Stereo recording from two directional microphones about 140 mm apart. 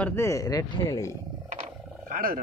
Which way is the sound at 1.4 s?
55° right (ahead or behind).